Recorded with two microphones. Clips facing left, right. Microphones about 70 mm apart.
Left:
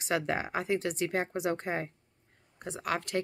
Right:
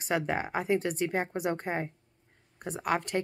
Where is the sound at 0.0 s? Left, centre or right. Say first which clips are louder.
Right 1 dB; centre.